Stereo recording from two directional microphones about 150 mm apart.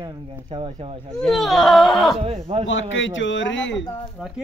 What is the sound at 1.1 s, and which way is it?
Speech, centre (ahead or behind).